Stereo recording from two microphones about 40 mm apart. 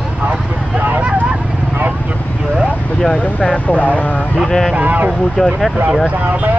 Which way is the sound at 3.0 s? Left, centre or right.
Centre.